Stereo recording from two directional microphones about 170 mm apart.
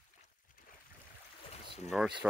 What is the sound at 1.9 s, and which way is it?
Speech, 5° right (ahead or behind).